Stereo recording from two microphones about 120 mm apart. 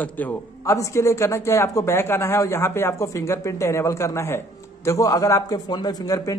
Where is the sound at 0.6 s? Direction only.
25° left (ahead or behind).